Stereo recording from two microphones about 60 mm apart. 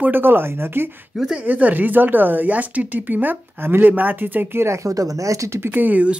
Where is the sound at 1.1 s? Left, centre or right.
Centre.